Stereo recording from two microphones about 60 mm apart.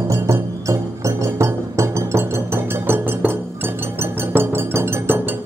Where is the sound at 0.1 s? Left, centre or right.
Right.